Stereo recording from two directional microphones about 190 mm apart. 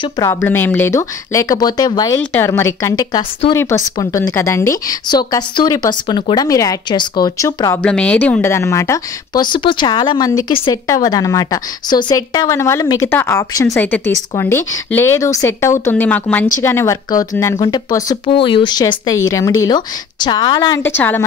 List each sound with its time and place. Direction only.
0.2 s a woman's voice: 15° left (ahead or behind)
20.8 s a woman's voice: 10° left (ahead or behind)